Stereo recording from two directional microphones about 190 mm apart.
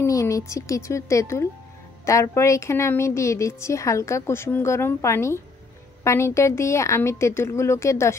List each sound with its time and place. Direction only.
0.0 s speech: 15° left (ahead or behind)